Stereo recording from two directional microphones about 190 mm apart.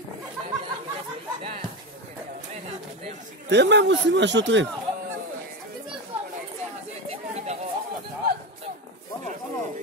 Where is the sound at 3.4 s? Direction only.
65° right (ahead or behind).